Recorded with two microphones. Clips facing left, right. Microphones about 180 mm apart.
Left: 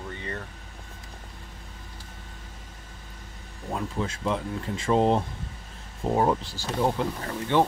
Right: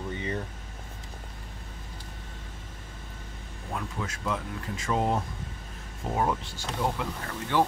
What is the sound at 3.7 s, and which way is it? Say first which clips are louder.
Speech: left 5 dB; 25° left (ahead or behind).